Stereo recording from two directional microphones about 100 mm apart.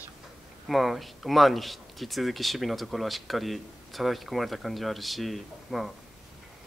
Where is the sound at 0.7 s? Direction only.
Centre (ahead or behind).